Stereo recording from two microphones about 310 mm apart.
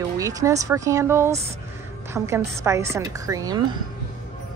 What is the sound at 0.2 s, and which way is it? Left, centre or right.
A woman's voice, centre.